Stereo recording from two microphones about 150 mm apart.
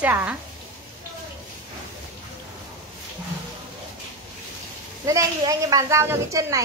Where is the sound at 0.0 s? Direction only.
10° right (ahead or behind).